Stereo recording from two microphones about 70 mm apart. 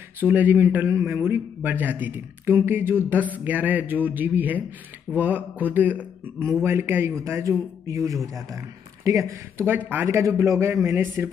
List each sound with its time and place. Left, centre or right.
0.2 s a man's voice: right
7.2 s a man's voice: right
9.7 s a man's voice: right
10.0 s a man's voice: right